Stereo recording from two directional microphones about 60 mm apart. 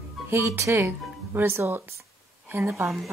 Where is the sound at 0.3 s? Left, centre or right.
Right.